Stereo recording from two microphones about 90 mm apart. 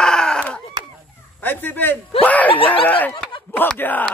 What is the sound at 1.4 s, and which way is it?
Speech, 20° left (ahead or behind).